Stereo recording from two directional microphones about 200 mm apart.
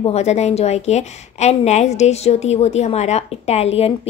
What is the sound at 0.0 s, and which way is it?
A woman's voice, 35° left (ahead or behind).